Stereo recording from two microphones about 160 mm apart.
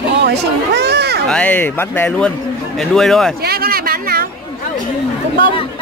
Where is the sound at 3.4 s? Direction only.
70° right (ahead or behind).